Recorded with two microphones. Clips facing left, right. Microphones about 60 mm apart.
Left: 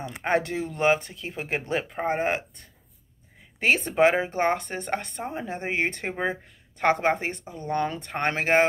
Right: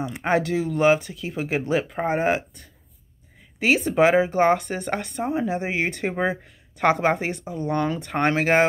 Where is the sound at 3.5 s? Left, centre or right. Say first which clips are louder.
Right 3 dB; centre.